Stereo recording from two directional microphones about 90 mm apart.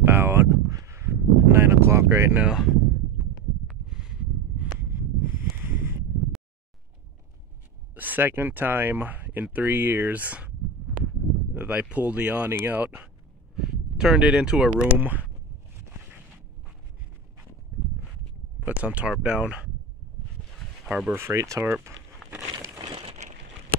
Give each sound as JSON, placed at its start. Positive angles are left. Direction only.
{"t": 0.0, "sound": "a sound", "side_deg": -25}
{"t": 2.4, "sound": "speech", "side_deg": -5}
{"t": 3.6, "sound": "a sound", "side_deg": -5}
{"t": 4.7, "sound": "a sound", "side_deg": -25}
{"t": 7.9, "sound": "speech", "side_deg": -20}
{"t": 11.5, "sound": "speech", "side_deg": -15}
{"t": 13.6, "sound": "speech", "side_deg": -5}
{"t": 18.7, "sound": "speech", "side_deg": -15}
{"t": 20.8, "sound": "speech", "side_deg": -10}
{"t": 21.1, "sound": "speech", "side_deg": -30}